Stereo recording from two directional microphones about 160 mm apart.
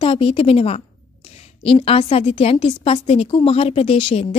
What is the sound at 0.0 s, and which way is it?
A woman's voice, 35° left (ahead or behind).